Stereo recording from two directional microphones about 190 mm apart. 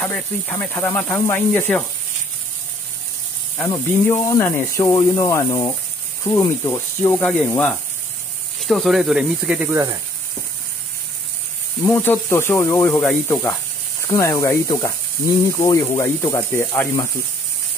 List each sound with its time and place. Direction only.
0.0 s speech: 10° left (ahead or behind)
3.5 s speech: 15° left (ahead or behind); by 9.8 s 10° right (ahead or behind)
11.8 s speech: 10° left (ahead or behind)